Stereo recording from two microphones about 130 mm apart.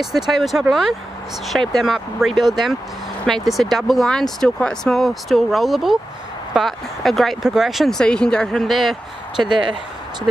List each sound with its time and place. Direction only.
0.0 s speech: centre (ahead or behind)
9.4 s speech: 35° right (ahead or behind)